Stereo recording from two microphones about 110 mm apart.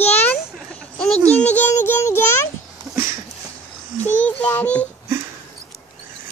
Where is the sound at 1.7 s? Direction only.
25° left (ahead or behind).